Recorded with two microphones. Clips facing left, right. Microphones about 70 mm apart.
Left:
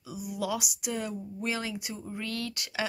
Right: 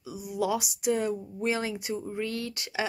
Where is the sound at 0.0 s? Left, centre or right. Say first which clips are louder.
Right 4 dB; right.